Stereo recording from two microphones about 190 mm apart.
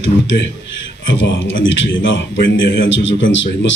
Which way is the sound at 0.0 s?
75° left (ahead or behind).